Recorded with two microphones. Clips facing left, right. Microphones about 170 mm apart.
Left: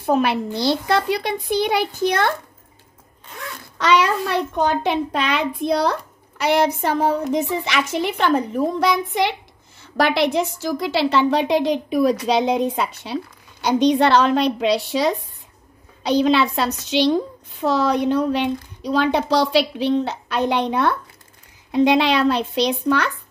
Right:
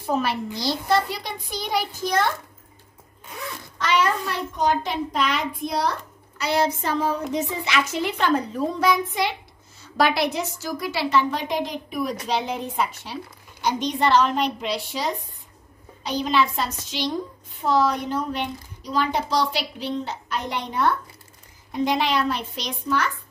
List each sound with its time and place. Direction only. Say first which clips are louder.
0.0 s a woman's voice: left 6 dB; 65° left (ahead or behind)
3.7 s a woman's voice: left 5 dB; 75° left (ahead or behind)
9.9 s a woman's voice: left 4 dB; 65° left (ahead or behind)